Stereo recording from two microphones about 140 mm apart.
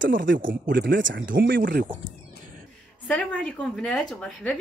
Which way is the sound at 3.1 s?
5° left (ahead or behind).